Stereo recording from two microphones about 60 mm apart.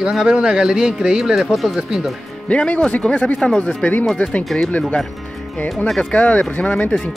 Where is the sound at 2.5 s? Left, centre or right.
Left.